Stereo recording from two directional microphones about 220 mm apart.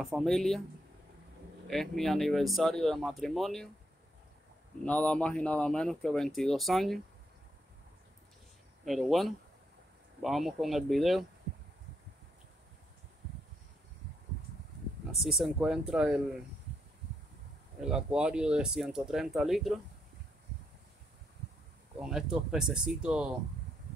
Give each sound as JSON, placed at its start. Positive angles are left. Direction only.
{"t": 0.0, "sound": "speech", "side_deg": 0}
{"t": 1.7, "sound": "speech", "side_deg": 0}
{"t": 4.8, "sound": "speech", "side_deg": 5}
{"t": 8.8, "sound": "speech", "side_deg": 0}
{"t": 15.1, "sound": "speech", "side_deg": 0}
{"t": 17.8, "sound": "speech", "side_deg": -5}
{"t": 22.0, "sound": "speech", "side_deg": -5}